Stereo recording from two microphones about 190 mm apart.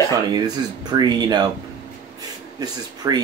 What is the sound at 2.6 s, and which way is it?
Speech, 20° right (ahead or behind).